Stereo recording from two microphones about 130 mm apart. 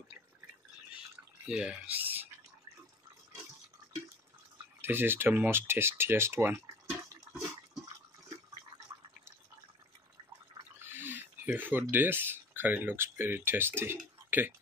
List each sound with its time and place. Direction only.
1.5 s speech: 5° right (ahead or behind)
4.8 s speech: 15° right (ahead or behind)
10.8 s a sound: 15° right (ahead or behind)
11.9 s speech: 15° right (ahead or behind)